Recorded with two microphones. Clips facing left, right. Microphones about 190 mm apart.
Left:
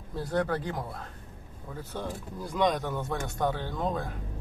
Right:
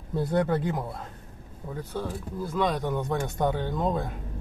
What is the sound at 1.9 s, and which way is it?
Speech, 10° right (ahead or behind).